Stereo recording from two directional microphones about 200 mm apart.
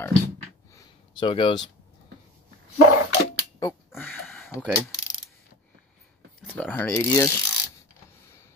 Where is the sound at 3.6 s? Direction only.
15° left (ahead or behind).